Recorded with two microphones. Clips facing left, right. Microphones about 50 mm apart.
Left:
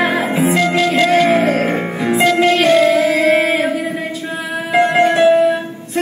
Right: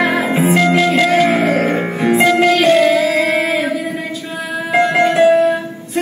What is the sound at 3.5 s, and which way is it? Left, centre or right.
Music, left.